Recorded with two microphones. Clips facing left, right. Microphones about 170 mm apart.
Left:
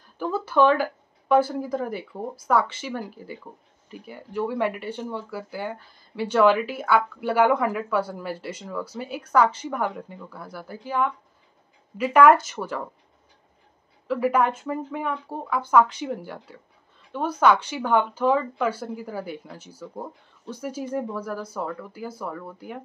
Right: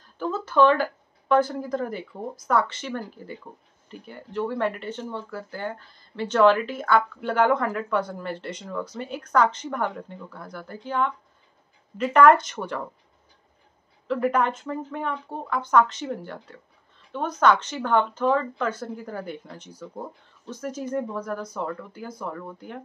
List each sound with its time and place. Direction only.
0.2 s speech: 10° left (ahead or behind)
14.0 s speech: 5° left (ahead or behind)